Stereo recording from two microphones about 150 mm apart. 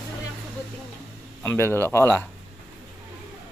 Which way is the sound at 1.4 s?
15° left (ahead or behind).